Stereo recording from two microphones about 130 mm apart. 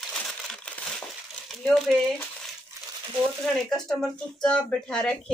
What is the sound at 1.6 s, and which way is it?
Speech, centre (ahead or behind).